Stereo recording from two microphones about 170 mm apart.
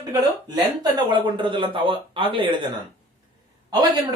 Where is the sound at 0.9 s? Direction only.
25° right (ahead or behind).